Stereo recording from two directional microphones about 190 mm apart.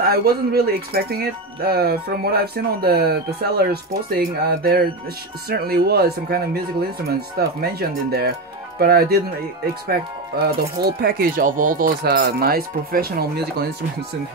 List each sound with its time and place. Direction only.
0.0 s speech: 55° right (ahead or behind)
10.6 s speech: 55° right (ahead or behind)